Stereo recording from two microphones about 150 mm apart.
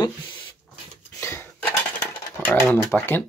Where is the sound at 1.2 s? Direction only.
15° left (ahead or behind).